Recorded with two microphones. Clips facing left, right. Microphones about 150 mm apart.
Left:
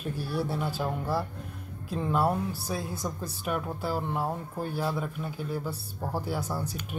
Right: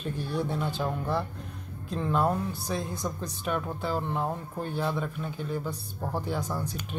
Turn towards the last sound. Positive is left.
turn(degrees=10)  # may be behind; listen again after turning